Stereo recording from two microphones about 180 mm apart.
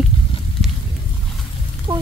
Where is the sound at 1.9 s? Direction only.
20° right (ahead or behind).